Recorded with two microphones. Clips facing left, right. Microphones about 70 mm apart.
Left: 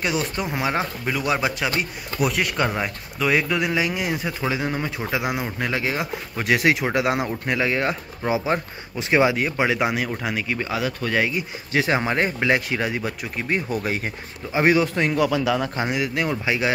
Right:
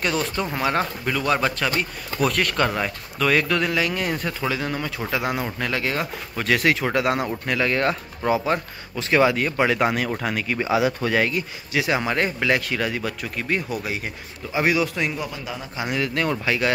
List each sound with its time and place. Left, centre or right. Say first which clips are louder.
0.0 s speech: even; centre
10.6 s speech: right 4 dB; centre
11.1 s speech: right 1 dB; centre
11.7 s speech: left 1 dB; left
13.7 s speech: left 3 dB; left
15.1 s speech: left 10 dB; left
15.9 s speech: even; centre